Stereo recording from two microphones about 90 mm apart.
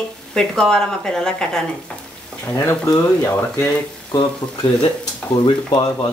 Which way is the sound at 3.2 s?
25° left (ahead or behind).